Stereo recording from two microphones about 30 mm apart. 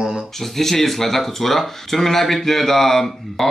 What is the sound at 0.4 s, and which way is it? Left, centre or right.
Speech, centre.